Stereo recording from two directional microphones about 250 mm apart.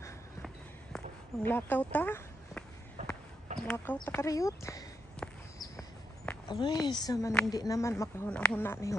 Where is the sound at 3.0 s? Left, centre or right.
Right.